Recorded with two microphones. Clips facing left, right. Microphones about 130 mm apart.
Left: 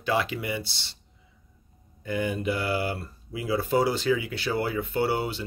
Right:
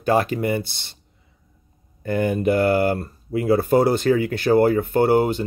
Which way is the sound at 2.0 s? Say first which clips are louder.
Right 8 dB; 50° right (ahead or behind).